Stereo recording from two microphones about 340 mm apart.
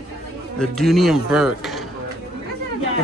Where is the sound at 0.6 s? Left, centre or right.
Centre.